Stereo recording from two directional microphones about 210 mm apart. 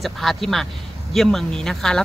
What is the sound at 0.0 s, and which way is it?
Speech, centre (ahead or behind).